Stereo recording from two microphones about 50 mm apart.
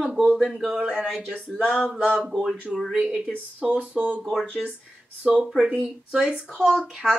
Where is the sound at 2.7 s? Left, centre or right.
Centre.